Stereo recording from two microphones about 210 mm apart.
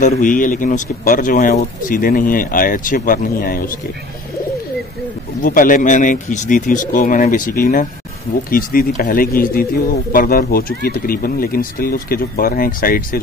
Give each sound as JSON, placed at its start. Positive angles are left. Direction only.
{"t": 0.0, "sound": "speech", "side_deg": 40}
{"t": 5.4, "sound": "speech", "side_deg": 40}